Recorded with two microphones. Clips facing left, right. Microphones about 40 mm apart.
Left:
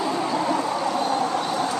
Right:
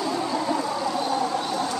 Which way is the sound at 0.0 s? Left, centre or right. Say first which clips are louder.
Left 2 dB; left.